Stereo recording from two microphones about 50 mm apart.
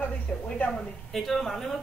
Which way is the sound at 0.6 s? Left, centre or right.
Centre.